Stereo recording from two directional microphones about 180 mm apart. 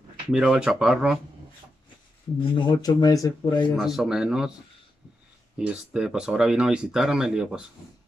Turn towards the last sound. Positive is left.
turn(degrees=-5)  # may be behind; listen again after turning